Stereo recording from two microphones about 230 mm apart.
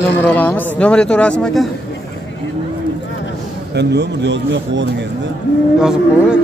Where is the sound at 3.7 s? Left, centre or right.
Right.